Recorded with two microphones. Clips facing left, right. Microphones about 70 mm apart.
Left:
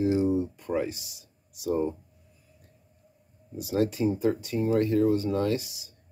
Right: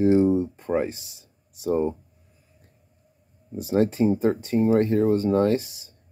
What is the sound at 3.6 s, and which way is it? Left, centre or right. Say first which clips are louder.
Speech: right 5 dB; right.